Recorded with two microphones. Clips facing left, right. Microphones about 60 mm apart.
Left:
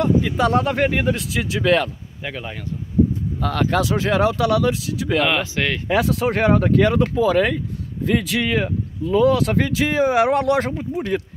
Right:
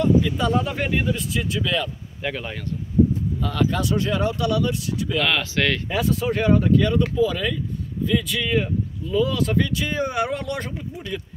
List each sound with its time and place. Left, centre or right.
0.2 s speech: left
1.1 s speech: left
2.2 s speech: centre
3.3 s speech: left
5.2 s speech: centre
5.9 s speech: left
6.2 s speech: left
10.8 s speech: left